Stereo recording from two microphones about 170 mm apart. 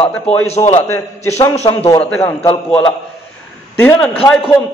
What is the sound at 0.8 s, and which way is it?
A man's voice, 15° left (ahead or behind).